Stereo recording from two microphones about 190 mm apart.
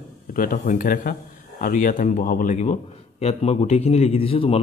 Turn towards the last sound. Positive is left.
turn(degrees=30)  # may be behind; listen again after turning